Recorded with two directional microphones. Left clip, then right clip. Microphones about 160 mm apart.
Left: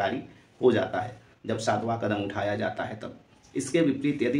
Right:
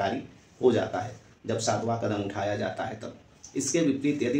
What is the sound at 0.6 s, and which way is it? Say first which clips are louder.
Speech: left 1 dB; 15° left (ahead or behind).